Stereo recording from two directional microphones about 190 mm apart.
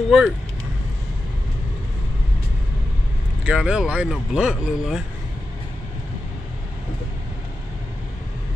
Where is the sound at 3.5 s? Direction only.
5° right (ahead or behind).